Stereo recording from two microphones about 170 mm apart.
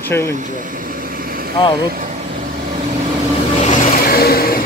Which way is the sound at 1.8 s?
55° right (ahead or behind).